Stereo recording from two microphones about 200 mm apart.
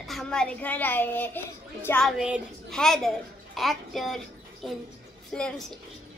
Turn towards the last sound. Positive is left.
turn(degrees=5)  # may be behind; listen again after turning